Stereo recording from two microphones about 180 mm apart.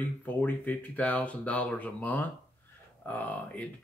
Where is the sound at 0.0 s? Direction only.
10° left (ahead or behind).